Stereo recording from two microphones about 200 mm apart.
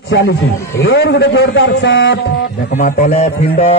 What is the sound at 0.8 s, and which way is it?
A man's voice, 60° left (ahead or behind).